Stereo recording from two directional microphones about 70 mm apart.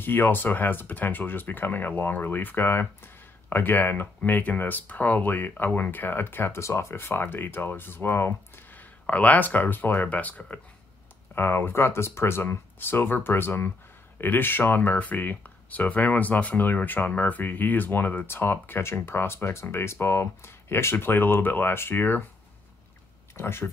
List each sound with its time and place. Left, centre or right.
0.0 s speech: left
23.3 s speech: left